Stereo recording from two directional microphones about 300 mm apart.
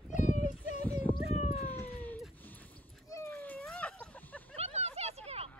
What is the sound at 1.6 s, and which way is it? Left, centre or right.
Cat, centre.